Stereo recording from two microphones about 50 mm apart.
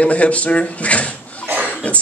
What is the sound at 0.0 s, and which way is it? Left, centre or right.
Speech, left.